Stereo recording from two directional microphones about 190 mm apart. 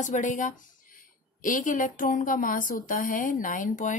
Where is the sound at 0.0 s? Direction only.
40° left (ahead or behind).